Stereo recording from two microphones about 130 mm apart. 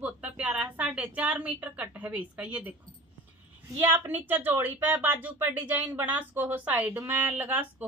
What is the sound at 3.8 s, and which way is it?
Speech, 15° right (ahead or behind).